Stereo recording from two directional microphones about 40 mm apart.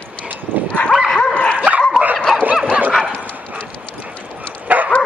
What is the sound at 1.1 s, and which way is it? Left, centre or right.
Dog, left.